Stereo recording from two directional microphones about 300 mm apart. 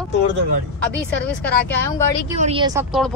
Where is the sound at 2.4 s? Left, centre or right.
Centre.